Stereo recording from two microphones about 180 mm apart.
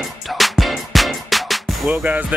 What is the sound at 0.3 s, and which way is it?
Music, centre (ahead or behind).